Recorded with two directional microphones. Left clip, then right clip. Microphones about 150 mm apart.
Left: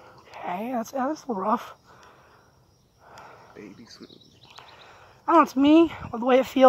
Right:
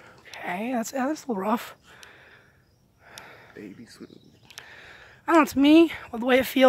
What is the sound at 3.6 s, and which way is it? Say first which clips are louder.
Speech: right 2 dB; 70° right (ahead or behind).